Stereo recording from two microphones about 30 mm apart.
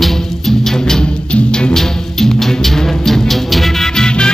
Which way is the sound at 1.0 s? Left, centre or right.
Left.